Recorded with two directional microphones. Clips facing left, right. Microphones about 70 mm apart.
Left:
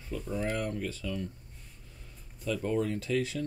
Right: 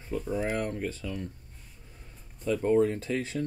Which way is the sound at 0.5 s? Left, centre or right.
Right.